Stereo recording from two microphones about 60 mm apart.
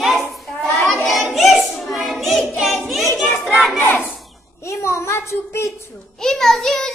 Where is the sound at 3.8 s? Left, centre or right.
Left.